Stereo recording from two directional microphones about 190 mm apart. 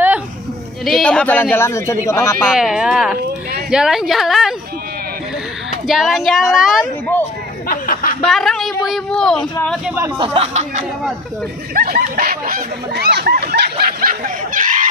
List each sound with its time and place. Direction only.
0.8 s speech: centre (ahead or behind)
2.5 s a woman's voice: 5° right (ahead or behind)
5.9 s a woman's voice: centre (ahead or behind)
7.6 s speech: 45° left (ahead or behind)
8.2 s a woman's voice: centre (ahead or behind)
9.8 s speech: 15° right (ahead or behind)
10.1 s speech: 30° right (ahead or behind)
11.7 s snicker: 50° right (ahead or behind)